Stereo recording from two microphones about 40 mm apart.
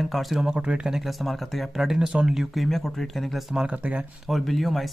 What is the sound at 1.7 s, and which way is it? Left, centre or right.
Speech, centre.